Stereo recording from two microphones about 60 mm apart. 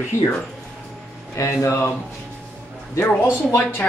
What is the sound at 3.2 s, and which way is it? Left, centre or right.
Speech, left.